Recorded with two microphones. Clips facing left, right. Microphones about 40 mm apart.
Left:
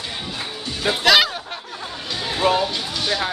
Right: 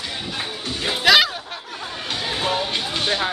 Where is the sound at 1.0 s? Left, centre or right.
Centre.